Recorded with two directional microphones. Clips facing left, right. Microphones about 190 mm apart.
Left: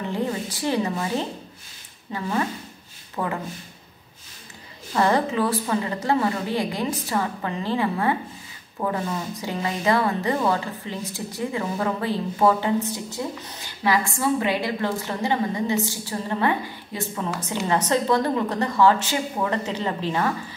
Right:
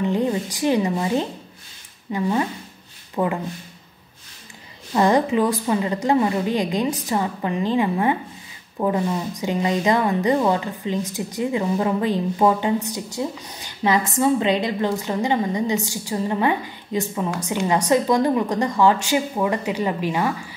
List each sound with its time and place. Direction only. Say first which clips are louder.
0.0 s a woman's voice: right 5 dB; 15° right (ahead or behind)
4.9 s a woman's voice: right 3 dB; 15° right (ahead or behind)